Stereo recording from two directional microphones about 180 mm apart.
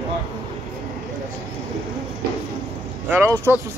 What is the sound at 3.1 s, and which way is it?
Speech, 15° right (ahead or behind).